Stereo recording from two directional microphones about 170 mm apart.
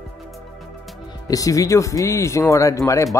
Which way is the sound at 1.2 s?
20° left (ahead or behind).